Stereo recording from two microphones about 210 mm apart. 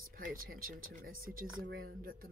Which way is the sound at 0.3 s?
45° right (ahead or behind).